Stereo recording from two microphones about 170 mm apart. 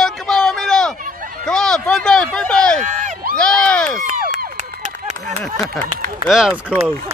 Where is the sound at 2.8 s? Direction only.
45° right (ahead or behind).